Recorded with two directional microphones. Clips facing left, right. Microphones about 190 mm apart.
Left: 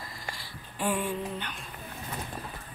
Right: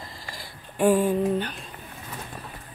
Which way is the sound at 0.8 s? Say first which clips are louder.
Right 10 dB; 45° right (ahead or behind).